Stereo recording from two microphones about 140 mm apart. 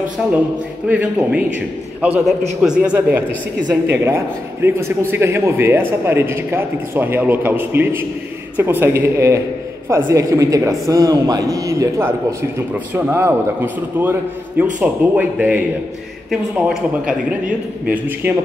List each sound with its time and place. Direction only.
0.2 s a man's voice: 5° right (ahead or behind)
2.6 s a man's voice: 5° right (ahead or behind); by 12.4 s 20° right (ahead or behind)
12.7 s a man's voice: 10° right (ahead or behind)